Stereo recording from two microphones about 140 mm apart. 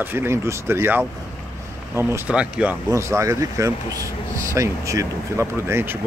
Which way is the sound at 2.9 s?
20° right (ahead or behind).